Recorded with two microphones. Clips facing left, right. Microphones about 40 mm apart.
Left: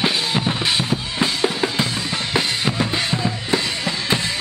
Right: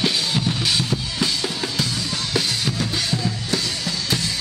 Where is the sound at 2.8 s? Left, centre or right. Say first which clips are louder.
Left 3 dB; left.